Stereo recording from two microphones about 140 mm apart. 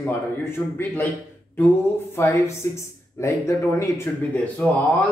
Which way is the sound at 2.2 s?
20° left (ahead or behind).